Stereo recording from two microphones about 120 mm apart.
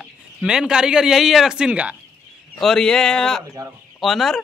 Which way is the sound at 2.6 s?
5° left (ahead or behind).